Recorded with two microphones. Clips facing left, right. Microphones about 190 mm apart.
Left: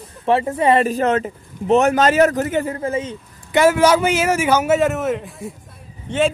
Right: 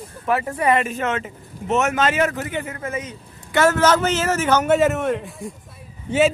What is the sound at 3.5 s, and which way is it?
Speech, 10° left (ahead or behind).